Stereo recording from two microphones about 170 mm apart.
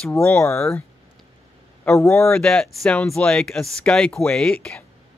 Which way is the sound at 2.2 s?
5° left (ahead or behind).